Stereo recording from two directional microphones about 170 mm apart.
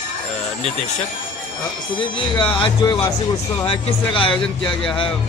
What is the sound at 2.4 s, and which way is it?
Speech, 30° left (ahead or behind).